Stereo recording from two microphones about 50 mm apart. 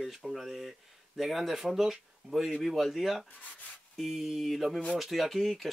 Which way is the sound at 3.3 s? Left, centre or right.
Left.